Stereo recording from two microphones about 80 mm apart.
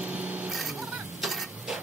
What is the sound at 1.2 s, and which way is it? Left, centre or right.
Printer, centre.